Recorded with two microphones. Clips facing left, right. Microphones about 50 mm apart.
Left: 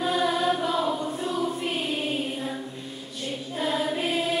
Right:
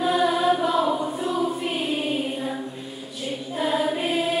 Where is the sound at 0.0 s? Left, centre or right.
Centre.